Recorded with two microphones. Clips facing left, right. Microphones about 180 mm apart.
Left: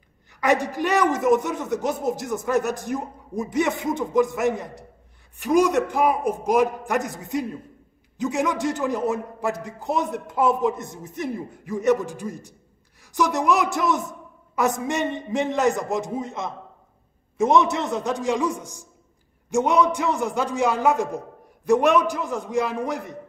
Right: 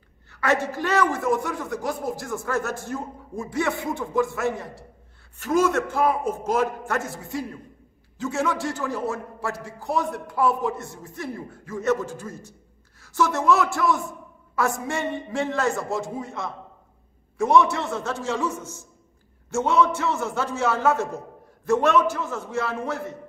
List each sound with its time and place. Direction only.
0.3 s a man's voice: 15° left (ahead or behind)